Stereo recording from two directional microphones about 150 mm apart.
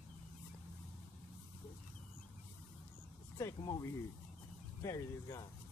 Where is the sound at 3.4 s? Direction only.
25° left (ahead or behind).